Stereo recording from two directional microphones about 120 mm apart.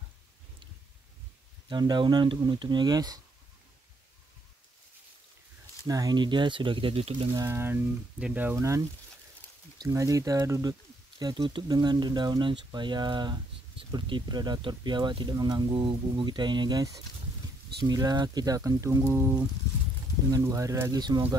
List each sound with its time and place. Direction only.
1.7 s speech: 40° right (ahead or behind)
5.9 s speech: 30° right (ahead or behind); by 7.2 s 50° right (ahead or behind)
7.3 s speech: 25° right (ahead or behind)
9.8 s speech: 25° right (ahead or behind)
20.9 s speech: 35° right (ahead or behind)